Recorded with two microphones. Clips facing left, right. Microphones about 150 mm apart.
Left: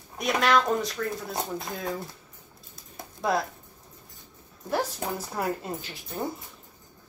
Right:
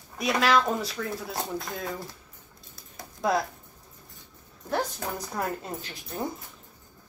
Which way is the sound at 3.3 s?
Centre (ahead or behind).